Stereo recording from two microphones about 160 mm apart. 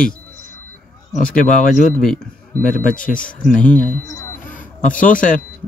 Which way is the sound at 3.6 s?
55° left (ahead or behind).